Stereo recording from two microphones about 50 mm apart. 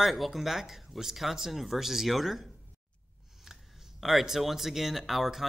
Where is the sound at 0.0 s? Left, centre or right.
Centre.